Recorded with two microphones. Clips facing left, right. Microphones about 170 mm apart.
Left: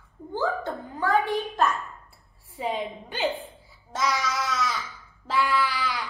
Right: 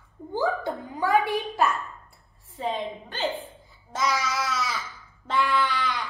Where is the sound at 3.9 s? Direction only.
Centre (ahead or behind).